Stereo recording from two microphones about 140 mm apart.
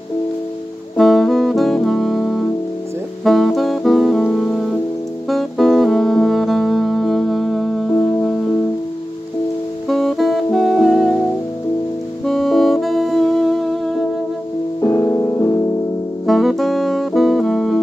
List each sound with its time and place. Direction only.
0.9 s music: centre (ahead or behind)
9.8 s music: centre (ahead or behind)
12.3 s saxophone: centre (ahead or behind)
14.8 s music: 20° left (ahead or behind)
16.3 s saxophone: centre (ahead or behind)